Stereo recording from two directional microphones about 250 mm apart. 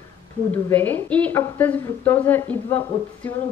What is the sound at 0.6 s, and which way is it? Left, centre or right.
A woman's voice, centre.